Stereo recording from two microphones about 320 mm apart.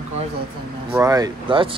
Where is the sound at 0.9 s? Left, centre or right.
Centre.